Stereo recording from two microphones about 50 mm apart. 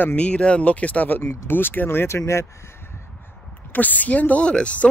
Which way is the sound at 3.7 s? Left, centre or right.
Left.